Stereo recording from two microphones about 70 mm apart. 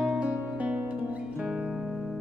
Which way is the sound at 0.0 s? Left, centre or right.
Centre.